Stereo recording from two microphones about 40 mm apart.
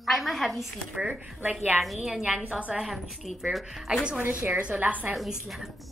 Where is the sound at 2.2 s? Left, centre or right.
Right.